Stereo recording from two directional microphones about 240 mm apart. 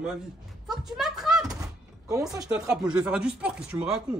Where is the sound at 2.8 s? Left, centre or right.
Centre.